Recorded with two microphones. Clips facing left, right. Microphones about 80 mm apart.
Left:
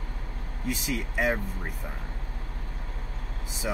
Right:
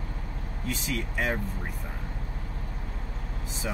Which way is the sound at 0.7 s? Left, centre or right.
Centre.